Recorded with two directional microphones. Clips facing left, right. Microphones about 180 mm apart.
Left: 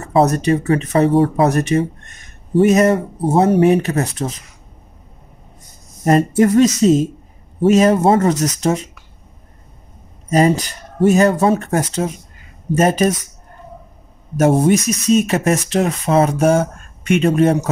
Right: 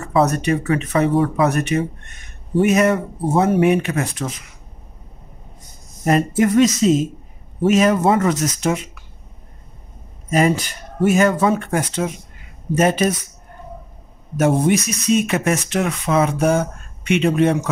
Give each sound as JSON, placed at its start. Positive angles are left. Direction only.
{"t": 0.0, "sound": "speech", "side_deg": 35}
{"t": 6.0, "sound": "speech", "side_deg": 40}
{"t": 10.3, "sound": "speech", "side_deg": 35}
{"t": 14.3, "sound": "speech", "side_deg": 40}